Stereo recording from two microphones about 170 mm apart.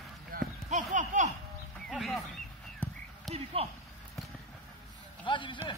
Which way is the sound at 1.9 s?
Centre (ahead or behind).